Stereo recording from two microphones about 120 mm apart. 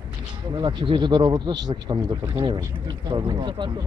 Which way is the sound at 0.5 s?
40° right (ahead or behind).